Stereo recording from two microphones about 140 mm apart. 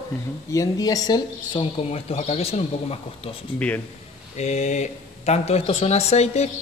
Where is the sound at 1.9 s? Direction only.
50° left (ahead or behind).